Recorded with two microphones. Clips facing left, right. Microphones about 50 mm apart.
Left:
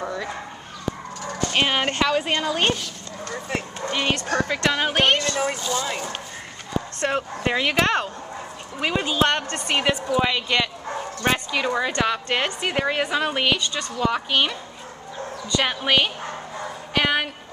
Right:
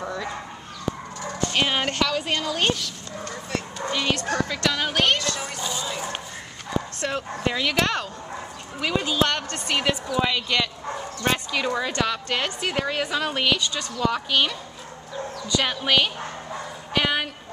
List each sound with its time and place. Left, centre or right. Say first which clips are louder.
1.5 s speech: left 2 dB; left
5.6 s speech: left 4 dB; centre
7.1 s a woman's voice: left 5 dB; left
16.9 s a sound: left 2 dB; centre